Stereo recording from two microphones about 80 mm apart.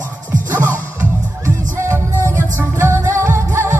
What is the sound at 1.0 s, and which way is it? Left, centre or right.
Music, right.